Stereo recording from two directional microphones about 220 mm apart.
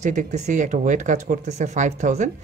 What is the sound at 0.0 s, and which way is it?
Speech, 35° right (ahead or behind).